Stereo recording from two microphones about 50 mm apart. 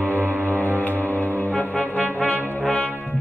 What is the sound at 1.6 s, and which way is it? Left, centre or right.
Brass instrument, left.